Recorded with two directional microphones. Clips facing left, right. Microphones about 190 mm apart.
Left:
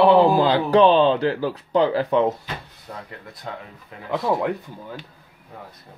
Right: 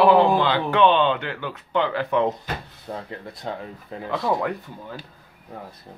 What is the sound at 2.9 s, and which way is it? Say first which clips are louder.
Speech: right 4 dB; 30° right (ahead or behind).